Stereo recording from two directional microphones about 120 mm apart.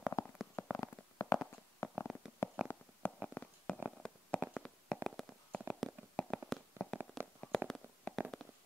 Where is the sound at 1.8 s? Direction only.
25° left (ahead or behind).